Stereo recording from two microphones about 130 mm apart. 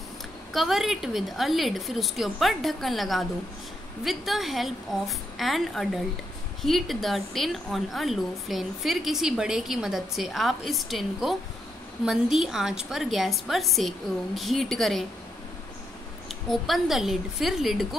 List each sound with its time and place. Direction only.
0.5 s a woman's voice: centre (ahead or behind)
16.3 s a woman's voice: centre (ahead or behind)